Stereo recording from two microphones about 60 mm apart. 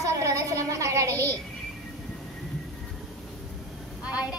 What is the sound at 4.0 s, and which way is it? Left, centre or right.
Vehicle, centre.